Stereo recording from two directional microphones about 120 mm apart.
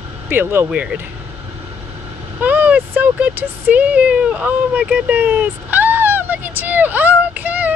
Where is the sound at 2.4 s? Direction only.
15° right (ahead or behind).